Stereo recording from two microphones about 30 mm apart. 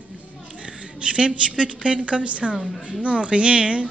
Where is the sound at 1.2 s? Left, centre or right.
Right.